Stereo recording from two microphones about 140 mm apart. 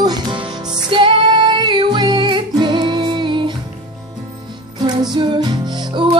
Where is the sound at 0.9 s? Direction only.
35° right (ahead or behind).